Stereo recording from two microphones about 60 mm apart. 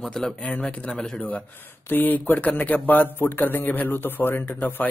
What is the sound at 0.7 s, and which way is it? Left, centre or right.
A man's voice, left.